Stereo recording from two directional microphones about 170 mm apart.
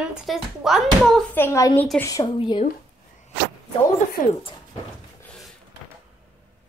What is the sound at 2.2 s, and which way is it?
Speech, 30° left (ahead or behind).